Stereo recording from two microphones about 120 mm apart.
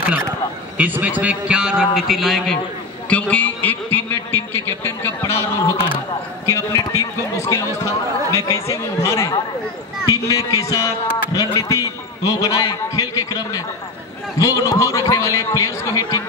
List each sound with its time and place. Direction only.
0.7 s a man's voice: 15° right (ahead or behind)
3.1 s a man's voice: 10° left (ahead or behind); by 16.2 s 30° left (ahead or behind)